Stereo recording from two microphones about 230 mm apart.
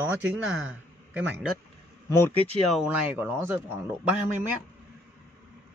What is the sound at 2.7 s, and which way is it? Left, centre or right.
Speech, centre.